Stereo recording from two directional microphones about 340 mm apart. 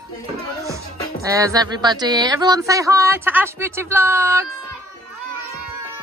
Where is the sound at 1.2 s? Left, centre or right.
Centre.